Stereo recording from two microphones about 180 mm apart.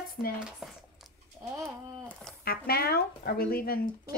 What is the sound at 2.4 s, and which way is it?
Speech, 60° left (ahead or behind).